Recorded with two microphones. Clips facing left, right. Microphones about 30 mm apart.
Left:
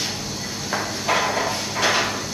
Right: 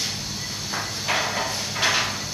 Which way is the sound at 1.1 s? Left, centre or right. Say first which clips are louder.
Left 4 dB; centre.